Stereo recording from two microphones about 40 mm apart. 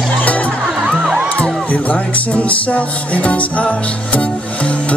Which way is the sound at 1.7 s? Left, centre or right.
Left.